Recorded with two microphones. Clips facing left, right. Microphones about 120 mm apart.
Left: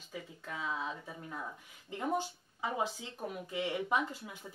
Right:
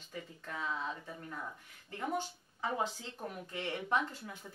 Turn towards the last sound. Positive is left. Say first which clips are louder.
# left 1 dB
turn(degrees=10)  # may be behind; listen again after turning